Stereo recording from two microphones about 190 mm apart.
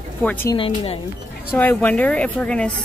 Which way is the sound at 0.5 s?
30° left (ahead or behind).